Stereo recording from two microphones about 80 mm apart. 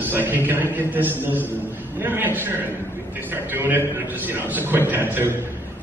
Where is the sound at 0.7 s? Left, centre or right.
Right.